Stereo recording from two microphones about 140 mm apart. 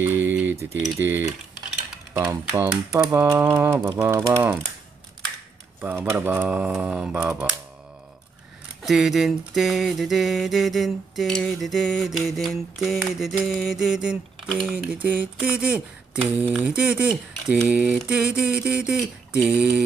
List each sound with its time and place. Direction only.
0.0 s typing: 15° right (ahead or behind)
0.9 s speech: 15° right (ahead or behind)
5.8 s speech: 15° right (ahead or behind)
8.8 s a sound: centre (ahead or behind)
16.5 s speech: 5° right (ahead or behind)